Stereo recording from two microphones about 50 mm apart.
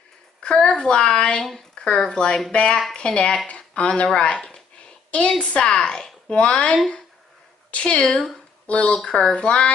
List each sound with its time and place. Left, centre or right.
0.4 s a woman's voice: left
5.8 s a woman's voice: centre
6.3 s speech: left
7.7 s speech: left
8.9 s speech: centre